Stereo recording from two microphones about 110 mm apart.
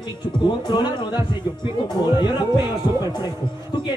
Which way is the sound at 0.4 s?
40° left (ahead or behind).